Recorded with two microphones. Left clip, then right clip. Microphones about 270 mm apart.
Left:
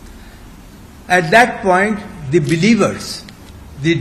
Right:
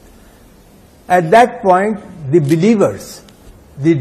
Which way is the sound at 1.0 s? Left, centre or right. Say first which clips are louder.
Right 2 dB; right.